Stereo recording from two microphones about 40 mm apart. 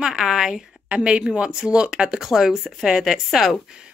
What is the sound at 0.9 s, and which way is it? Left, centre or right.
Speech, right.